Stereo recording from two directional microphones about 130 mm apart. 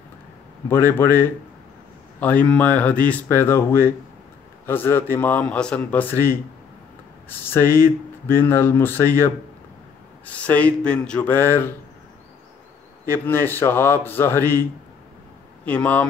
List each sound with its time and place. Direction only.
0.7 s speech: 15° left (ahead or behind)
13.0 s speech: 20° left (ahead or behind)